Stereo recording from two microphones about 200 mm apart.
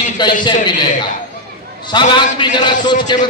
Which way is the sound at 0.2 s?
20° left (ahead or behind).